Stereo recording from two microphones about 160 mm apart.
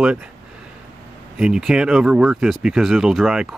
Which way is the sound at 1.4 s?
5° right (ahead or behind).